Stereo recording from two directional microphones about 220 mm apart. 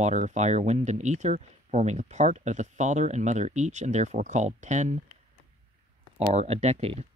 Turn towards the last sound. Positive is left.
turn(degrees=-30)  # may be behind; listen again after turning